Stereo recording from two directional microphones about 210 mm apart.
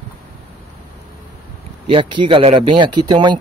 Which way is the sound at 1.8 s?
25° right (ahead or behind).